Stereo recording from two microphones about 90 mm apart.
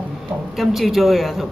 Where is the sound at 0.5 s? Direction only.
Centre (ahead or behind).